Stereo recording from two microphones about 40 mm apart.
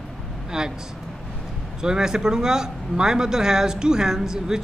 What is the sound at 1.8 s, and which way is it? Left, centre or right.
Speech, centre.